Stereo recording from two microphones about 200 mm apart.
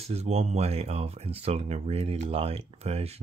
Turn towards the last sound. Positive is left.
turn(degrees=-30)  # may be behind; listen again after turning